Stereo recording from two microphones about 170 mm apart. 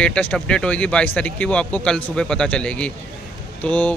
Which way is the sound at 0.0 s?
5° left (ahead or behind).